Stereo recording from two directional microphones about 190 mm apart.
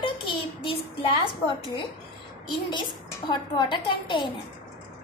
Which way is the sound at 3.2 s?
25° left (ahead or behind).